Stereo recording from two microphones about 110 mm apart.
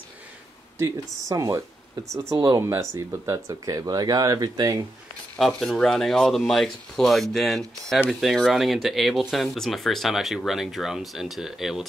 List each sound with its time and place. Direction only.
0.7 s speech: 25° right (ahead or behind)
5.4 s speech: centre (ahead or behind)